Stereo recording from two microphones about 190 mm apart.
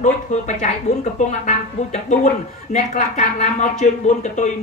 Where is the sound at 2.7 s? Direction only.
40° left (ahead or behind).